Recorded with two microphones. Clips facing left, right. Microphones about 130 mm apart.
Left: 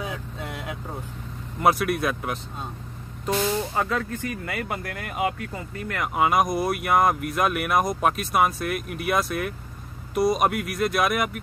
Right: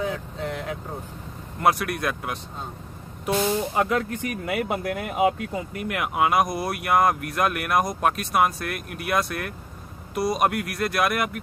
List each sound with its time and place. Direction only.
0.1 s vehicle: 10° left (ahead or behind)
1.6 s speech: centre (ahead or behind)
3.3 s speech: 10° right (ahead or behind)
6.1 s speech: centre (ahead or behind)